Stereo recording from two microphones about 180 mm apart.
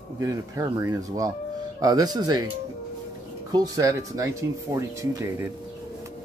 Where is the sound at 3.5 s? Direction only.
20° right (ahead or behind).